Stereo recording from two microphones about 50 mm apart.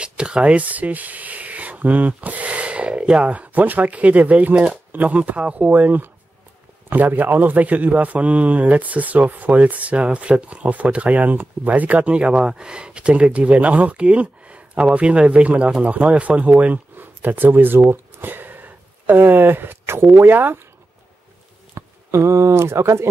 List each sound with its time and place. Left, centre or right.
0.0 s a man's voice: right
21.7 s speech: right